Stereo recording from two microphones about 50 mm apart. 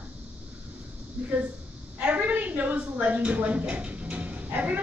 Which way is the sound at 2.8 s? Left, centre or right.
Right.